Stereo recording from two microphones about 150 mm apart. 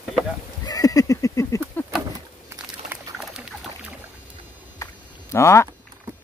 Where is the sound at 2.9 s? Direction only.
5° right (ahead or behind).